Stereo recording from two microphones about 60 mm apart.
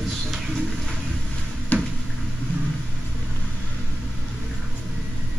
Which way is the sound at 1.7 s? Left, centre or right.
Left.